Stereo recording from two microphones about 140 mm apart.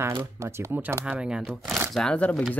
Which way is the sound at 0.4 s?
15° right (ahead or behind).